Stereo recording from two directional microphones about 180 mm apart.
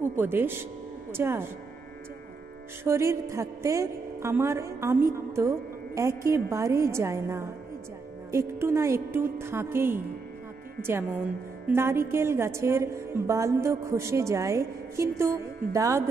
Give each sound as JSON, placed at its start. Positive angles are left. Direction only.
{"t": 0.2, "sound": "a woman's voice", "side_deg": -10}
{"t": 2.8, "sound": "a woman's voice", "side_deg": -15}